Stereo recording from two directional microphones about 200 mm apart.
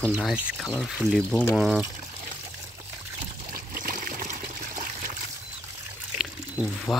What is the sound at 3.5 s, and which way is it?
Trickle, 45° right (ahead or behind).